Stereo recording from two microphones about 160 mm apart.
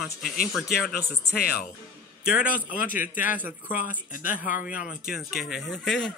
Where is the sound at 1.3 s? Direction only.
80° left.